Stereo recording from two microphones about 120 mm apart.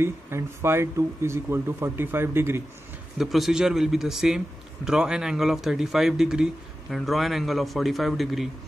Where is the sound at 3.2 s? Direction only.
Centre (ahead or behind).